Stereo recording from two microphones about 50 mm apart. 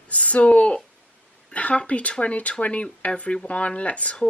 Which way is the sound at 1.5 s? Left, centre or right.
Left.